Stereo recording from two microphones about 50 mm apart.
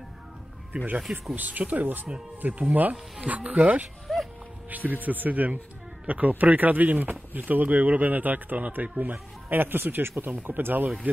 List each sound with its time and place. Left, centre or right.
1.3 s speech: right
4.1 s music: centre
4.6 s speech: right